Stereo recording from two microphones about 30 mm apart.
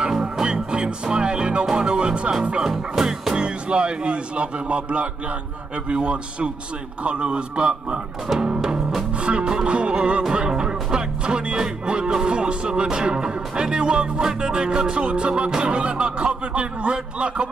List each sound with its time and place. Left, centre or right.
0.2 s music: right
2.5 s speech: right
3.0 s music: centre
3.3 s speech: right
9.2 s music: right
9.7 s speech: right
10.5 s music: right
12.8 s speech: right